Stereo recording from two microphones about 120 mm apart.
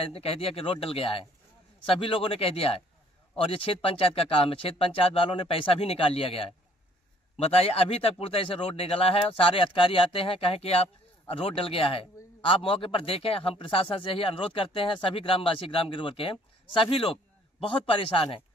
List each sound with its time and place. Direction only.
0.0 s speech: 55° left (ahead or behind)